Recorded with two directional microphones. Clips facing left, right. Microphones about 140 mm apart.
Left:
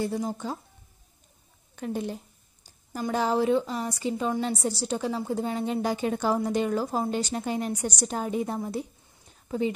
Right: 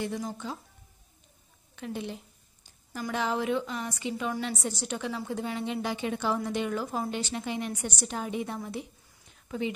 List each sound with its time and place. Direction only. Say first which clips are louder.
0.0 s a woman's voice: left 4 dB; 35° left (ahead or behind)
1.8 s a woman's voice: left 5 dB; 45° left (ahead or behind)